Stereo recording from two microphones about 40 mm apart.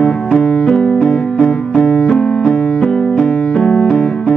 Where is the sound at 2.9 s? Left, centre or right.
Centre.